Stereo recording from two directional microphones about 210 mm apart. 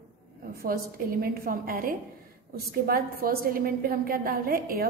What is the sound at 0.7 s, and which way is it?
A woman's voice, 45° right (ahead or behind).